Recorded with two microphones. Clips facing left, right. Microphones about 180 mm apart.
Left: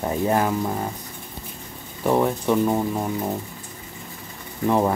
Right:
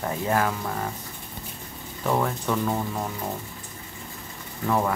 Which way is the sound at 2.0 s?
20° left (ahead or behind).